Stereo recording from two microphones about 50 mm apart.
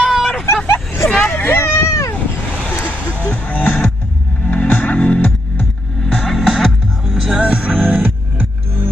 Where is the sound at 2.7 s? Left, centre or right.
Left.